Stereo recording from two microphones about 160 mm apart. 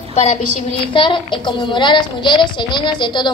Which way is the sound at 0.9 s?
30° left (ahead or behind).